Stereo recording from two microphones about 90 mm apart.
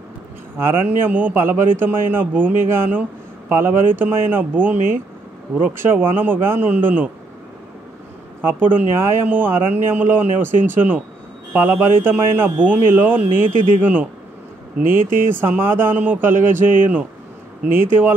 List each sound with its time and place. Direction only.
0.6 s speech: 25° right (ahead or behind)
8.4 s speech: 20° right (ahead or behind)
15.2 s speech: 25° right (ahead or behind)
17.7 s speech: 25° right (ahead or behind)